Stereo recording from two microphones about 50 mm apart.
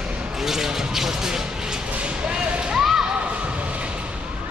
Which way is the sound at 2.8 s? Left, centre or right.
Centre.